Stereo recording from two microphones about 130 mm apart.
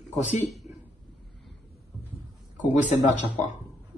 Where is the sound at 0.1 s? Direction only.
70° left (ahead or behind).